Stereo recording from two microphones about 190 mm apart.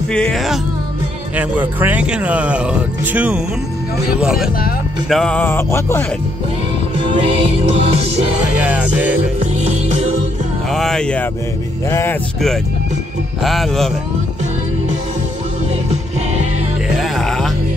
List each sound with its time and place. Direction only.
0.1 s speech: 5° left (ahead or behind)
5.1 s music: 5° left (ahead or behind)
7.2 s music: 30° right (ahead or behind)
8.5 s speech: 5° right (ahead or behind)
10.7 s speech: centre (ahead or behind)
11.9 s music: 15° left (ahead or behind)
13.4 s speech: centre (ahead or behind)
16.9 s music: centre (ahead or behind)